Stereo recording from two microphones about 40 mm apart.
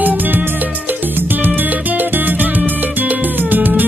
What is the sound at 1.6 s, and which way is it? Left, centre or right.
Music, right.